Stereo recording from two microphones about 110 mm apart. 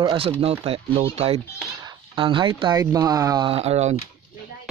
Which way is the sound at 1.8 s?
45° right (ahead or behind).